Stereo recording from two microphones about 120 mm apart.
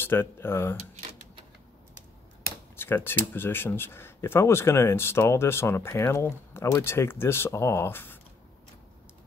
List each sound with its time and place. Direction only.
0.0 s speech: 20° left (ahead or behind)
2.4 s speech: 20° left (ahead or behind)